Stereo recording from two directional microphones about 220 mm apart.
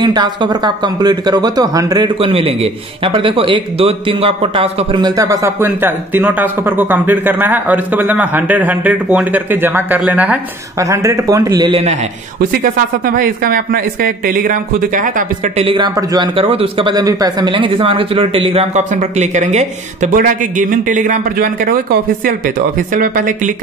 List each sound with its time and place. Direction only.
0.0 s speech: 20° right (ahead or behind)
12.4 s speech: 40° right (ahead or behind)